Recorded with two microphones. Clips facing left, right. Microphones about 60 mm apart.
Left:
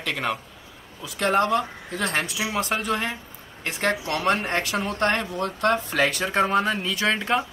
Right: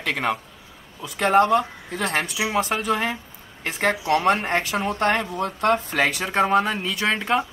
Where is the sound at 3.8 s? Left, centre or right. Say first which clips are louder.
Right 4 dB; centre.